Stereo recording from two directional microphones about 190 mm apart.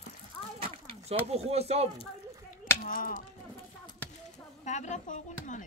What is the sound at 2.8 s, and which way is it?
Speech, 45° left (ahead or behind).